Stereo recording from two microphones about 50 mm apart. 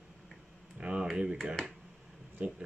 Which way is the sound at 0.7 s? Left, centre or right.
Centre.